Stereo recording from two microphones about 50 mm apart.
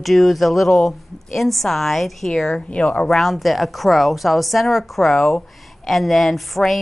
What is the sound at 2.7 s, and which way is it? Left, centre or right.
Speech, left.